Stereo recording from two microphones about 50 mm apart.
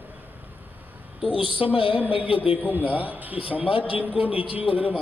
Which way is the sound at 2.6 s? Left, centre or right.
Left.